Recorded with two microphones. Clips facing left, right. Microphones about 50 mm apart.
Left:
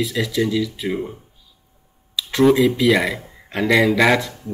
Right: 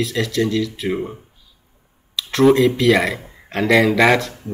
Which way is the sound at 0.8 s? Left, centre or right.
Centre.